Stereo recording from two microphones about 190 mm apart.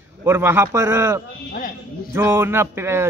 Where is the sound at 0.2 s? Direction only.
10° right (ahead or behind).